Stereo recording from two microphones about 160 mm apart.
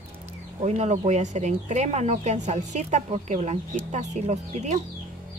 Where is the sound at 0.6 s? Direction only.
45° right (ahead or behind).